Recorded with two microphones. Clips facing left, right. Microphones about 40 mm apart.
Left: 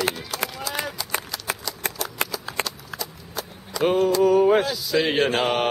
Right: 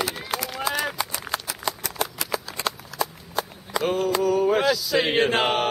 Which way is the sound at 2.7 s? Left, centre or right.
Right.